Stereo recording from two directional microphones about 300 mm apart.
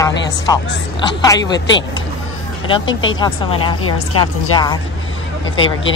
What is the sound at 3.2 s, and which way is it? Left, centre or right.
Speech, centre.